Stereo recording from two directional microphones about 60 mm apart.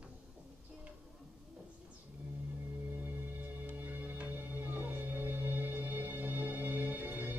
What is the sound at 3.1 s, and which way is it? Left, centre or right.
Music, right.